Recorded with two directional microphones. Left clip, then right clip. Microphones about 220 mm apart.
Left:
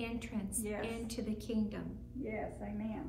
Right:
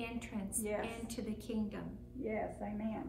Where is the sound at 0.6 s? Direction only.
45° right (ahead or behind).